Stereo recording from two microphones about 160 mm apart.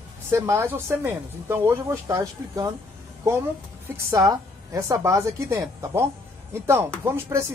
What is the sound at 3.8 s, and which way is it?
A woman's voice, 20° right (ahead or behind).